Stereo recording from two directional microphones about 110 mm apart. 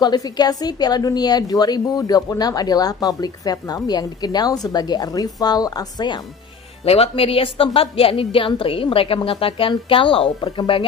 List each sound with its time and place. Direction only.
0.0 s a woman's voice: 40° left (ahead or behind)
6.8 s a woman's voice: 60° left (ahead or behind)